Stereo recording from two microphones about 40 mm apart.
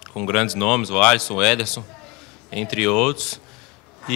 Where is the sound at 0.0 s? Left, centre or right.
Centre.